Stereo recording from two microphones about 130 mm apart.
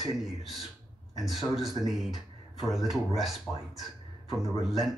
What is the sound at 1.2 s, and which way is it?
Speech, centre (ahead or behind).